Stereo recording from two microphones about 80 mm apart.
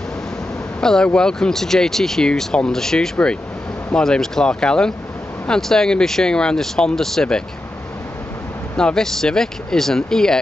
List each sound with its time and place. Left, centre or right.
0.7 s speech: centre
8.7 s speech: centre